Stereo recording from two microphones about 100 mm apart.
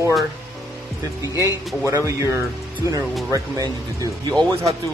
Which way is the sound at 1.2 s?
35° right (ahead or behind).